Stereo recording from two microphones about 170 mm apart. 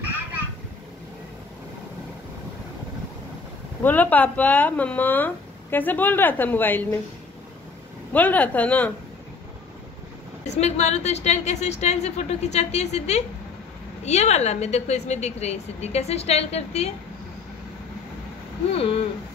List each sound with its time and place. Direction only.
3.8 s speech: 10° left (ahead or behind)
8.1 s speech: 10° left (ahead or behind)
10.4 s a woman's voice: 40° left (ahead or behind)
18.7 s a woman's voice: 35° left (ahead or behind)